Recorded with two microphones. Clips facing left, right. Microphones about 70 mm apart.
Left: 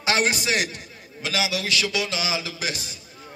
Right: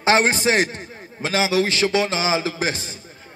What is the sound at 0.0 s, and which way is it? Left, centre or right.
A man's voice, right.